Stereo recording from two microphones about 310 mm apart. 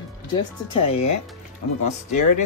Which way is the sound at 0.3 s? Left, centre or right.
Centre.